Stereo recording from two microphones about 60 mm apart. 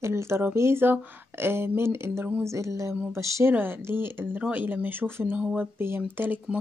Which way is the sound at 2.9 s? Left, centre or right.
Right.